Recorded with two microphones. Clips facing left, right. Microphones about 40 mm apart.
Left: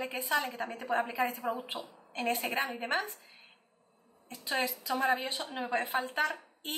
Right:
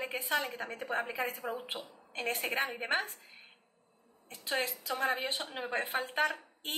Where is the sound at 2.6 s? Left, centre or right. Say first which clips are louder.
Even; centre.